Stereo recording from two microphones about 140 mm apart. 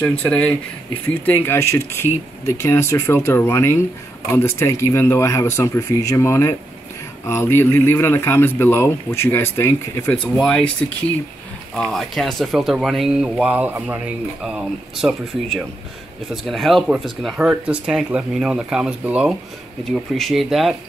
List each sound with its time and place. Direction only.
0.0 s a man's voice: 10° left (ahead or behind)
10.4 s a man's voice: 5° left (ahead or behind)
11.7 s speech: 5° left (ahead or behind)